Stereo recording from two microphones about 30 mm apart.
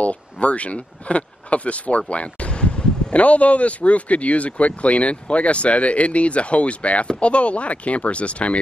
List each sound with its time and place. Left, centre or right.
0.0 s speech: left
3.2 s speech: left